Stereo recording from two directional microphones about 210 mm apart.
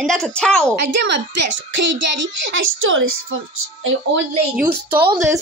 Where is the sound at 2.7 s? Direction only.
70° right (ahead or behind).